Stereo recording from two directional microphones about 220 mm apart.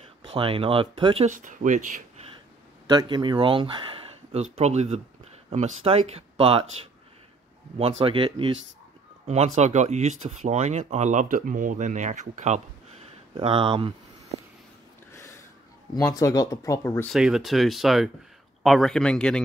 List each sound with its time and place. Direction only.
0.3 s speech: 25° right (ahead or behind)
1.9 s a sound: 35° right (ahead or behind)
2.9 s speech: 20° right (ahead or behind)
8.0 s speech: 25° right (ahead or behind)
9.6 s speech: 30° right (ahead or behind)
15.1 s a sound: 15° left (ahead or behind)
16.1 s speech: 15° left (ahead or behind)